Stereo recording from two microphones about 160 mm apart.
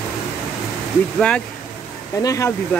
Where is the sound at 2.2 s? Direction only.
20° left (ahead or behind).